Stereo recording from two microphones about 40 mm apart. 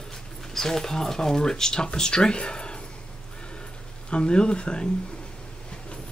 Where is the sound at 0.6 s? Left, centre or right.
Centre.